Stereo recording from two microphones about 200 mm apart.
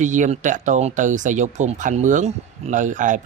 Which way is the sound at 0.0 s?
40° right (ahead or behind).